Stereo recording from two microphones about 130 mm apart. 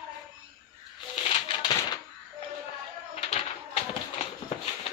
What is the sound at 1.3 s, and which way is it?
Music, 40° left (ahead or behind).